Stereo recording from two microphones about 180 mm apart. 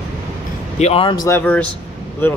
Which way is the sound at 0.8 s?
30° left (ahead or behind).